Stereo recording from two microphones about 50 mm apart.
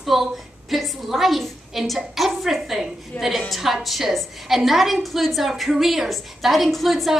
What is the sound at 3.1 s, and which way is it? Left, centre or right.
Speech, left.